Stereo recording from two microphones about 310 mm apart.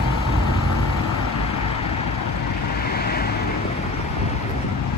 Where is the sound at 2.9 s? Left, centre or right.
Left.